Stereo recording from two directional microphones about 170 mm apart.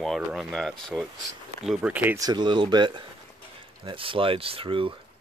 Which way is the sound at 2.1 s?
25° right (ahead or behind).